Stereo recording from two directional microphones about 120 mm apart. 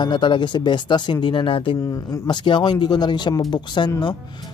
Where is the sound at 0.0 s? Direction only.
40° left (ahead or behind).